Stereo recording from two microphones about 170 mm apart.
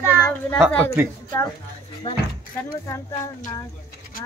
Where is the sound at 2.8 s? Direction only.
20° left (ahead or behind).